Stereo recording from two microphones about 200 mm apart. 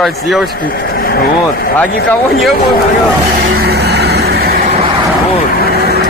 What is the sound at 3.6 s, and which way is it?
Vehicle, 55° right (ahead or behind).